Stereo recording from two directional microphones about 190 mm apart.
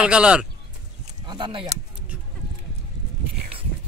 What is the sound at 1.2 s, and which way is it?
Speech, 25° right (ahead or behind).